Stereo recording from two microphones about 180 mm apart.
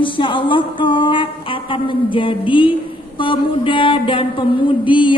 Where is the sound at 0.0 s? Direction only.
30° left (ahead or behind).